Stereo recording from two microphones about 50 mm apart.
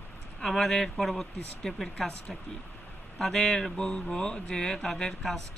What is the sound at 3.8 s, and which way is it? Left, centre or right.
Speech, centre.